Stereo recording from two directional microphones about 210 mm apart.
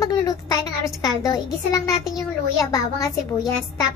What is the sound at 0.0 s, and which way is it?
A child's voice, 15° left (ahead or behind).